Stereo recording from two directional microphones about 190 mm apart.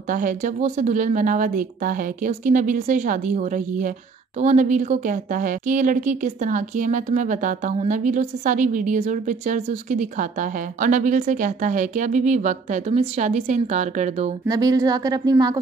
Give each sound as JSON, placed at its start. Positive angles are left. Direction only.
{"t": 0.1, "sound": "a woman's voice", "side_deg": -45}
{"t": 14.5, "sound": "speech", "side_deg": -20}